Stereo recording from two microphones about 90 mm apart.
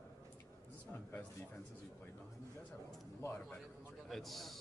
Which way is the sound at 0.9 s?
20° left (ahead or behind).